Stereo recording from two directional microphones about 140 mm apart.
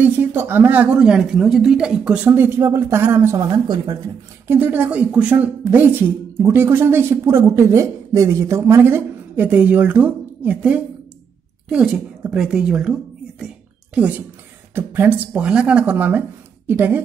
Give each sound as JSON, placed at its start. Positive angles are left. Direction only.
{"t": 0.0, "sound": "a woman's voice", "side_deg": -15}
{"t": 4.5, "sound": "a woman's voice", "side_deg": -15}
{"t": 14.7, "sound": "a woman's voice", "side_deg": -15}